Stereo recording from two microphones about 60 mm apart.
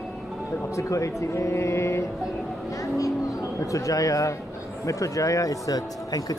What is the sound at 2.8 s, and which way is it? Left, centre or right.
Speech, left.